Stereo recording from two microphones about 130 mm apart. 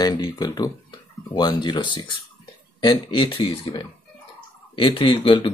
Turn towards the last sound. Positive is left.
turn(degrees=40)  # may be behind; listen again after turning